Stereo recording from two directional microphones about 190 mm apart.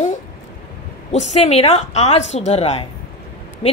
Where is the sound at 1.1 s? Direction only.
35° left (ahead or behind).